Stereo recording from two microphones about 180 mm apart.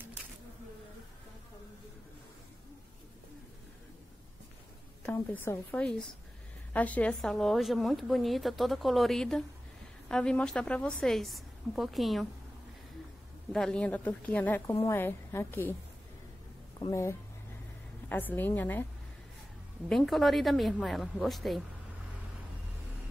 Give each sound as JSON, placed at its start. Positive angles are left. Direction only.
{"t": 5.0, "sound": "a woman's voice", "side_deg": 10}
{"t": 13.5, "sound": "a woman's voice", "side_deg": 5}
{"t": 16.9, "sound": "a woman's voice", "side_deg": 15}
{"t": 19.9, "sound": "a woman's voice", "side_deg": 0}